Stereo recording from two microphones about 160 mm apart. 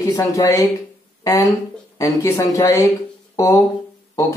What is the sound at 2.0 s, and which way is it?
Speech, 20° left (ahead or behind).